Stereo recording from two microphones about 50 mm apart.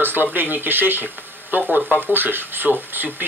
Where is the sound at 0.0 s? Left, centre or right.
Right.